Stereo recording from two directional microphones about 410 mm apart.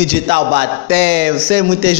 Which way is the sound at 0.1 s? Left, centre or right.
Right.